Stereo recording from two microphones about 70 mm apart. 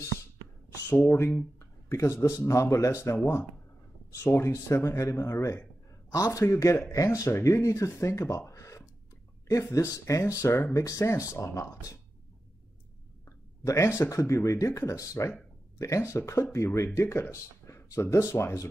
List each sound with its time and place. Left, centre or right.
0.8 s speech: left
4.2 s speech: left
6.1 s a man's voice: left
6.4 s speech: left
13.7 s speech: left